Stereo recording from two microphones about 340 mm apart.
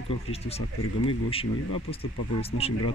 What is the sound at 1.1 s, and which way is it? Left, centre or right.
Speech, centre.